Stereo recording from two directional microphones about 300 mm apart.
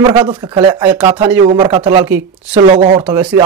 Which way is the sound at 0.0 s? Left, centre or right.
Centre.